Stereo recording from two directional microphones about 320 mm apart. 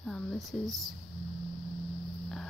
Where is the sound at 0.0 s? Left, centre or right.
Centre.